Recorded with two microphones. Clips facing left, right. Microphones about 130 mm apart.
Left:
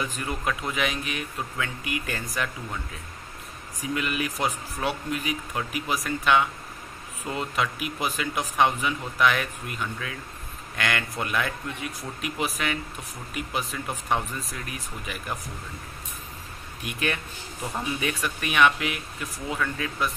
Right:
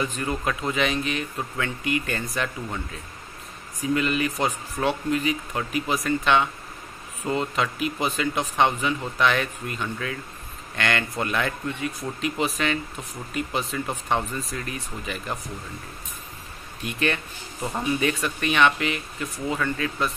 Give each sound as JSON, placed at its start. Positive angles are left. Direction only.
{"t": 0.0, "sound": "speech", "side_deg": 5}
{"t": 3.9, "sound": "speech", "side_deg": 5}
{"t": 16.8, "sound": "speech", "side_deg": 10}